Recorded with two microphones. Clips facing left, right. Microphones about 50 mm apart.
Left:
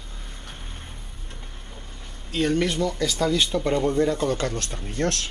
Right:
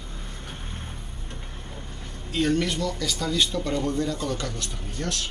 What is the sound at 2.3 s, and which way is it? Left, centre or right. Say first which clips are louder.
Speech: left 1 dB; centre.